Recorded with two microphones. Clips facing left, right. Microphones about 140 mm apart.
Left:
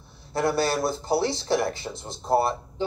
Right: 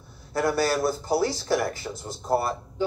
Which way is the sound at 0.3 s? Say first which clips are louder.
Even; 25° left (ahead or behind).